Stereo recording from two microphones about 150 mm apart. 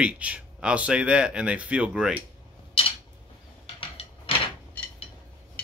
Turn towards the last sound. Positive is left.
turn(degrees=35)  # may be behind; listen again after turning